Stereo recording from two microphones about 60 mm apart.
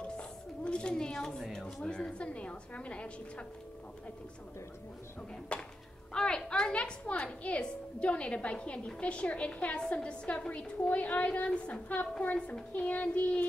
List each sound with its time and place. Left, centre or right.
0.2 s a woman's voice: centre
5.5 s a woman's voice: centre